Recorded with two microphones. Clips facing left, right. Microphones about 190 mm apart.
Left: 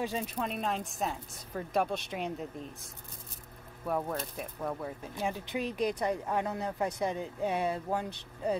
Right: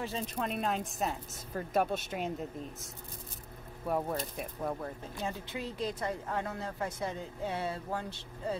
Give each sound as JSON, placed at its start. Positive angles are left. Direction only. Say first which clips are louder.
{"t": 0.0, "sound": "a woman's voice", "louder": "left 3 dB", "side_deg": 15}
{"t": 0.4, "sound": "a woman's voice", "louder": "right 2 dB", "side_deg": 0}
{"t": 5.2, "sound": "a woman's voice", "louder": "left 4 dB", "side_deg": 15}